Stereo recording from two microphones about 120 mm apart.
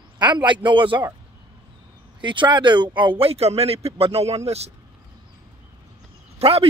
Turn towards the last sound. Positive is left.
turn(degrees=-60)  # may be behind; listen again after turning